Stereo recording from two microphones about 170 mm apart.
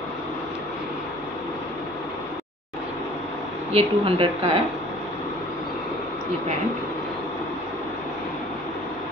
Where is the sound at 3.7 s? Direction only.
35° right (ahead or behind).